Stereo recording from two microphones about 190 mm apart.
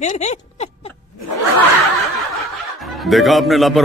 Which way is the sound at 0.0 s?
40° left (ahead or behind).